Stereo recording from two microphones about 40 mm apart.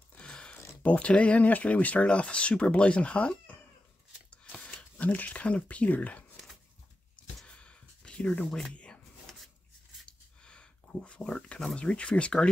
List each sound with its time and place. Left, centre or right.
0.2 s a sound: left
0.8 s speech: left
2.0 s speech: left
5.0 s speech: left
6.3 s a sound: centre
7.4 s a sound: left
8.5 s speech: centre
8.7 s rub: left
10.0 s dog: left
11.3 s speech: left